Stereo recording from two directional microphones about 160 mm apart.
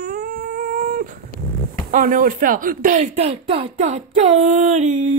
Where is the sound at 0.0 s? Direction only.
65° right (ahead or behind).